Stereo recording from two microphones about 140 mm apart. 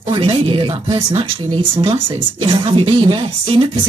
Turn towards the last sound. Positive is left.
turn(degrees=-40)  # may be behind; listen again after turning